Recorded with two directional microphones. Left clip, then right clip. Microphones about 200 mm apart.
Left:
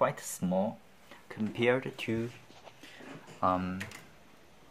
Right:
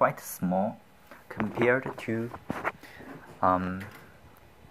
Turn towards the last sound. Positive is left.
turn(degrees=15)  # may be behind; listen again after turning